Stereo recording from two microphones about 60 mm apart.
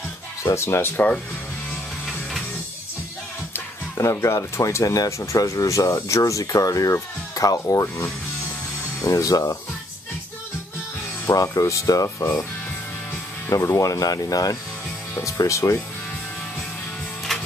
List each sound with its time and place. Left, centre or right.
0.4 s speech: left
4.0 s speech: left
9.0 s speech: left
11.3 s speech: left
12.2 s speech: left
13.5 s speech: left
15.2 s speech: left
17.3 s printer: centre